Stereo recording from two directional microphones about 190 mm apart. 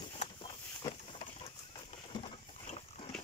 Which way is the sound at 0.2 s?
30° left (ahead or behind).